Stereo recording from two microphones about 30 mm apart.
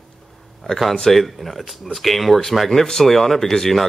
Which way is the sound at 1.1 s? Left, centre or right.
Centre.